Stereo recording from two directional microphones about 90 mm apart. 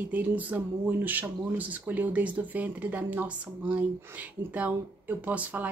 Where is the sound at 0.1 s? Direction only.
20° right (ahead or behind).